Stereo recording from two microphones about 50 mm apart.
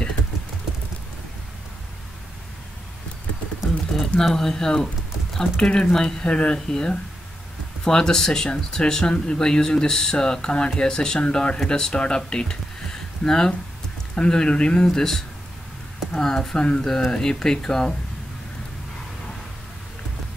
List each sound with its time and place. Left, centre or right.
3.6 s pigeon: centre
4.2 s speech: centre
12.2 s a sound: centre
14.1 s speech: centre